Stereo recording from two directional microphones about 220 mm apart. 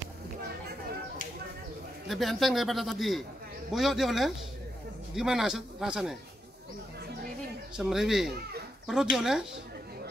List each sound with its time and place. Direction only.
2.0 s a man's voice: centre (ahead or behind)
7.7 s a man's voice: 5° right (ahead or behind)